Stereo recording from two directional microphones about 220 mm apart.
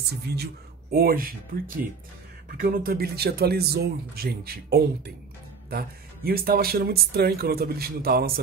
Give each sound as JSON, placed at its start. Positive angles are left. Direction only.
{"t": 0.3, "sound": "speech", "side_deg": -45}
{"t": 2.6, "sound": "speech", "side_deg": -40}